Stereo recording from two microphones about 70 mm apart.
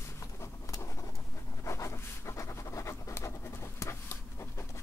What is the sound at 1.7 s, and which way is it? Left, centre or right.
Scratch, left.